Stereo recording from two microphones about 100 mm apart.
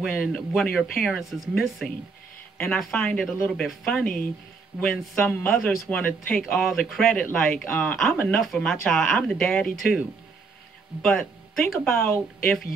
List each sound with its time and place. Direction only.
0.0 s speech: centre (ahead or behind)
2.5 s speech: 15° left (ahead or behind)
6.4 s speech: centre (ahead or behind); by 7.9 s 20° left (ahead or behind)
8.0 s speech: centre (ahead or behind)
11.0 s speech: 5° left (ahead or behind)